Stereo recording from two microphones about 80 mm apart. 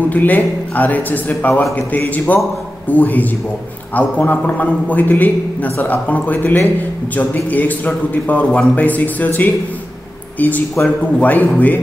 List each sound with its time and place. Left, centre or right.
0.1 s a man's voice: left